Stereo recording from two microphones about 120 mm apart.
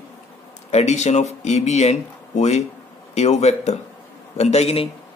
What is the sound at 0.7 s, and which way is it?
Speech, 70° left (ahead or behind).